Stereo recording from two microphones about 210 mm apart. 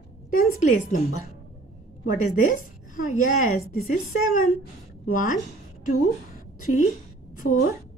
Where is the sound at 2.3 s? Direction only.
40° left (ahead or behind).